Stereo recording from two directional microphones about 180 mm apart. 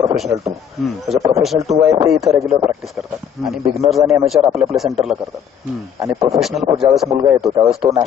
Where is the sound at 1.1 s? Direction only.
15° right (ahead or behind).